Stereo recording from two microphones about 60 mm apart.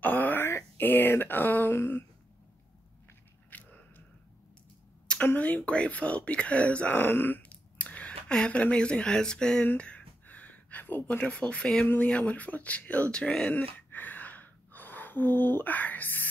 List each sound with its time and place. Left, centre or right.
0.0 s wail: left
0.5 s a sound: left
0.8 s speech: left
3.4 s biting: left
5.2 s speech: left
7.8 s speech: left
9.8 s a sound: left
11.1 s speech: centre
13.5 s speech: left
13.8 s a sound: left